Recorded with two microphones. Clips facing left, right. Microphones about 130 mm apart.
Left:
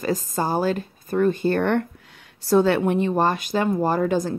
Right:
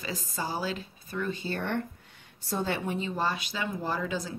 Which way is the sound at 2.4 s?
80° left.